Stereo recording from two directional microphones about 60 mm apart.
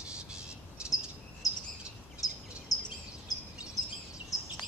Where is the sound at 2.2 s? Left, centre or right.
Left.